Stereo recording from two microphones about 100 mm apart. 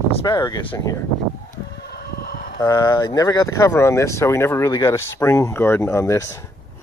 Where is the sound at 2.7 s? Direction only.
50° left (ahead or behind).